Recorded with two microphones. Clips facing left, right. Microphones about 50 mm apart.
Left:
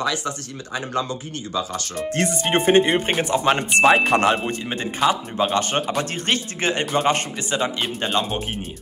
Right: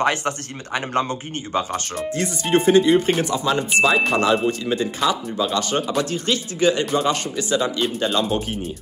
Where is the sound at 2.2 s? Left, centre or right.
Left.